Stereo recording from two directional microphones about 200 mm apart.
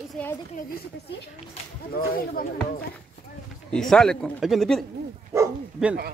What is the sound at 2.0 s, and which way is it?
Speech, 50° left (ahead or behind).